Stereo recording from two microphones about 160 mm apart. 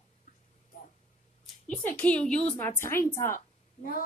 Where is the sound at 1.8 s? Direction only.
10° left (ahead or behind).